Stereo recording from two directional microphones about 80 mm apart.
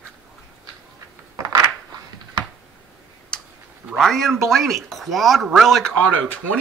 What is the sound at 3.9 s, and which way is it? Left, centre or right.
Speech, centre.